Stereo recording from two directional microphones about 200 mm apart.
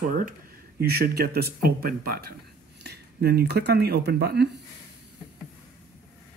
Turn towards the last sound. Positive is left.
turn(degrees=-55)  # may be behind; listen again after turning